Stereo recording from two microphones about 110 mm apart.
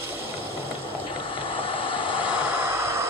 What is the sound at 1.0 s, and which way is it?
Vehicle, 50° left (ahead or behind).